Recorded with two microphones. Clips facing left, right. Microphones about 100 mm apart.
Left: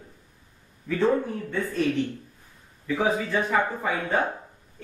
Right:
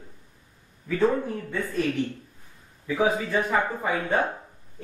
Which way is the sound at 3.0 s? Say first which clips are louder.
Right 1 dB; 10° right (ahead or behind).